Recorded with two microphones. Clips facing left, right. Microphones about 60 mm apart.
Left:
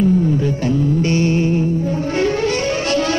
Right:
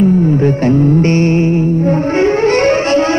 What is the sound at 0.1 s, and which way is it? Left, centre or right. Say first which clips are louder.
Music: right 4 dB; centre.